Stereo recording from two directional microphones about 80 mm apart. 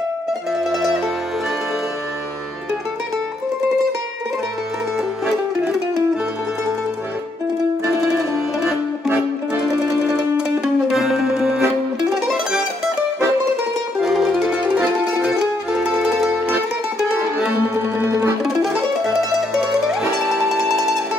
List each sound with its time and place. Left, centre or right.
0.5 s mandolin: centre
4.9 s music: centre
10.1 s music: centre
14.0 s music: centre
15.1 s mandolin: centre
17.9 s music: right
18.4 s mandolin: centre